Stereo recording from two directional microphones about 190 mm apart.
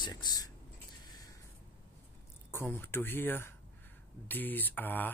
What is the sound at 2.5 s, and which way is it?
Speech, 10° left (ahead or behind).